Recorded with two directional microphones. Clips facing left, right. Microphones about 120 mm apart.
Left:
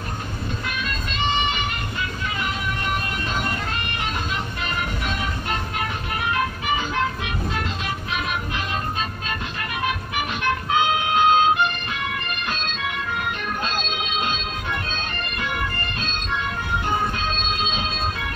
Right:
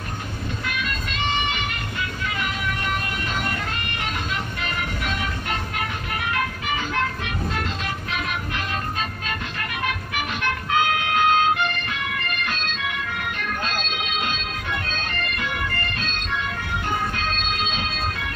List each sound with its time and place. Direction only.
10.8 s siren: 20° left (ahead or behind)